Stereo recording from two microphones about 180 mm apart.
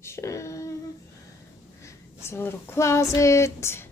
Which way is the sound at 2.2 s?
15° left (ahead or behind).